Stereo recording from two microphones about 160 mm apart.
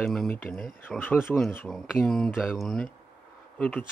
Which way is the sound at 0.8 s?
10° left (ahead or behind).